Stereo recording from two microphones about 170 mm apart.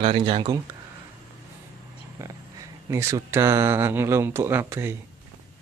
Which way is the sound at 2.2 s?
15° right (ahead or behind).